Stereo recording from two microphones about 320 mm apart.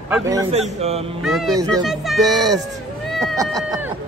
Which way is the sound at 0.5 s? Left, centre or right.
Centre.